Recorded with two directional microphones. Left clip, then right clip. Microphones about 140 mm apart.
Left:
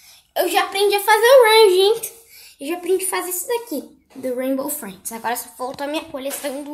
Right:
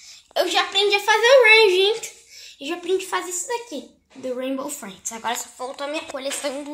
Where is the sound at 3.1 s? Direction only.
10° left (ahead or behind).